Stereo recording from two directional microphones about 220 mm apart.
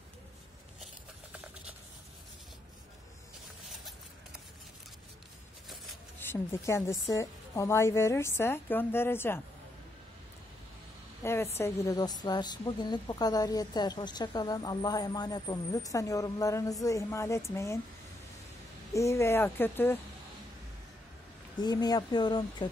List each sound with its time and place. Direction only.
6.2 s a woman's voice: 10° left (ahead or behind)
11.5 s a woman's voice: 15° left (ahead or behind)
18.9 s a woman's voice: 10° left (ahead or behind)
21.5 s speech: 20° left (ahead or behind)